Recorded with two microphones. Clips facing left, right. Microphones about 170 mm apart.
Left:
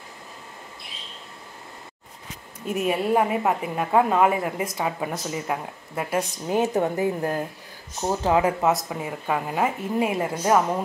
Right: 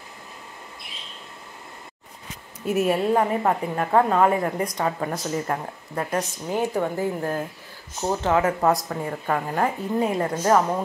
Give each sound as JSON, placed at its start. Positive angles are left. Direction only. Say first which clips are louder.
{"t": 2.6, "sound": "a woman's voice", "louder": "right 3 dB", "side_deg": -5}
{"t": 3.1, "sound": "a woman's voice", "louder": "even", "side_deg": 10}
{"t": 6.6, "sound": "a woman's voice", "louder": "left 1 dB", "side_deg": 20}
{"t": 8.5, "sound": "a woman's voice", "louder": "right 1 dB", "side_deg": 0}